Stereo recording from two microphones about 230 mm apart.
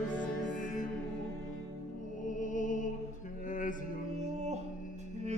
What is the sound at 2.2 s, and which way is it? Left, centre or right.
Music, left.